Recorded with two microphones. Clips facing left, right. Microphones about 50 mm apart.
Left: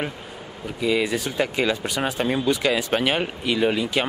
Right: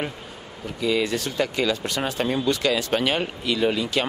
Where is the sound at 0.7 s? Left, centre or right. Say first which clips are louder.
Left 1 dB; centre.